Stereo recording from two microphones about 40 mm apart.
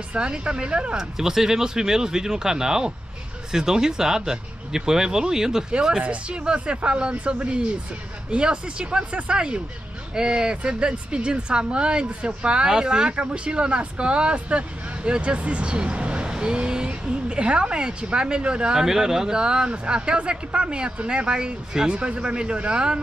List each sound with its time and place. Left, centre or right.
0.1 s speech: right
0.9 s speech: centre
18.8 s speech: centre